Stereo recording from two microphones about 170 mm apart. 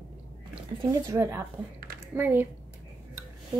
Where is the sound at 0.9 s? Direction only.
20° right (ahead or behind).